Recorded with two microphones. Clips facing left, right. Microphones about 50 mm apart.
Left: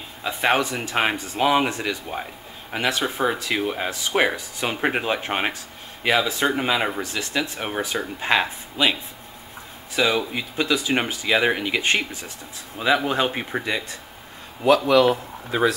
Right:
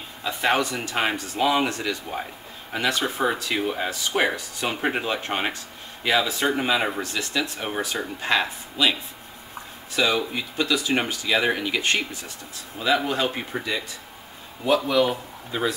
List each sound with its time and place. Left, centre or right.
0.3 s speech: centre
10.3 s speech: left
14.6 s a man's voice: left